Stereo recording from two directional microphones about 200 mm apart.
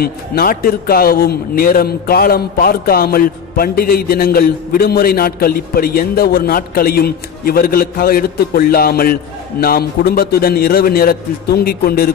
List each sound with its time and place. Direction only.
0.0 s a man's voice: 50° left (ahead or behind)